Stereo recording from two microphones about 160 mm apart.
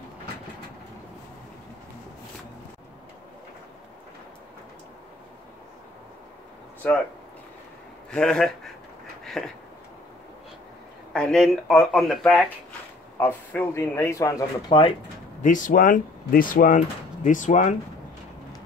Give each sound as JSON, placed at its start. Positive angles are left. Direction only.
{"t": 8.1, "sound": "speech", "side_deg": 5}
{"t": 11.1, "sound": "a man's voice", "side_deg": 5}
{"t": 14.7, "sound": "speech", "side_deg": 35}
{"t": 15.4, "sound": "speech", "side_deg": 55}